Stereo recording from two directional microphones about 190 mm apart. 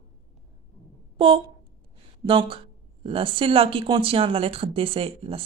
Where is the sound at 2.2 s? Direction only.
25° right (ahead or behind).